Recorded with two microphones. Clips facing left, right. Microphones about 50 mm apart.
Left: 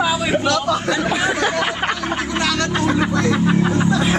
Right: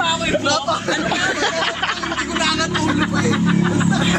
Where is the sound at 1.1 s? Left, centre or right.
Centre.